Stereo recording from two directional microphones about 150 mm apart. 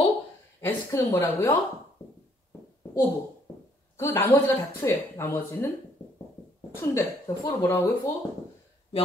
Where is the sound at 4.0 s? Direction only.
15° left (ahead or behind).